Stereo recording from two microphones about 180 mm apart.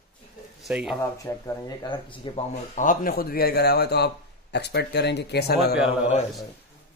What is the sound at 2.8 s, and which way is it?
A man's voice, 50° left (ahead or behind).